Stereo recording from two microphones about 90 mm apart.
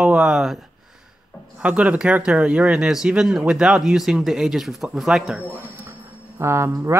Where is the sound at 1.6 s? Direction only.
10° right (ahead or behind).